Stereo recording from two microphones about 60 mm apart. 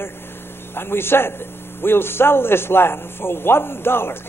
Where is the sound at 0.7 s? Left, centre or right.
Left.